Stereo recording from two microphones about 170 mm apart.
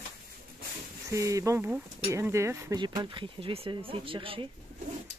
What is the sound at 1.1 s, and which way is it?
Speech, 20° right (ahead or behind).